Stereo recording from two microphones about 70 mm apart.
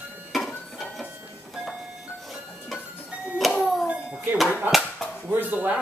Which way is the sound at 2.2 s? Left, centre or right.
Centre.